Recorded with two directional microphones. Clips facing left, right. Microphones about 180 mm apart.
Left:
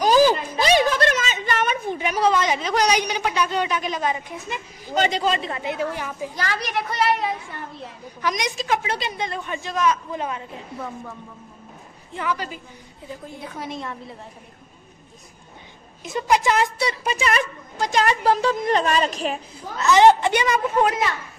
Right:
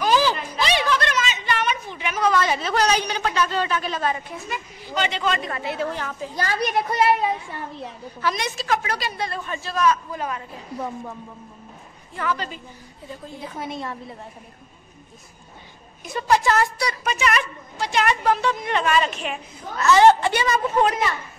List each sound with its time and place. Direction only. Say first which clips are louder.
0.0 s a sound: left 4 dB; 45° left (ahead or behind)
2.3 s a man's voice: even; 15° left (ahead or behind)
4.8 s a woman's voice: left 3 dB; 40° left (ahead or behind); by 6.3 s 10° left (ahead or behind)
6.3 s a child's voice: right 5 dB; 30° right (ahead or behind)
8.2 s a woman's voice: left 1 dB; 15° left (ahead or behind)
12.1 s a man's voice: even; 15° left (ahead or behind)
13.4 s a woman's voice: right 2 dB; centre (ahead or behind)
16.0 s a woman's voice: even; 20° left (ahead or behind); by 19.4 s 35° left (ahead or behind)
19.8 s a man's voice: even; 15° left (ahead or behind)